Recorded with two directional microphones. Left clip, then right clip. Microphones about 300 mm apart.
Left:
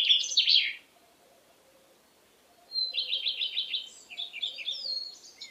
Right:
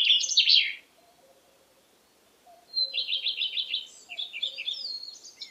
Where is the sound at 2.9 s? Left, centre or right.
Left.